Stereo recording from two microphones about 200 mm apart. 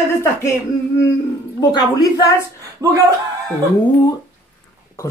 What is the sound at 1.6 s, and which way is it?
Speech, 20° left (ahead or behind).